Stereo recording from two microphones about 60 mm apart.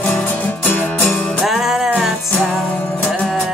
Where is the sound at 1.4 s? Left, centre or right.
Centre.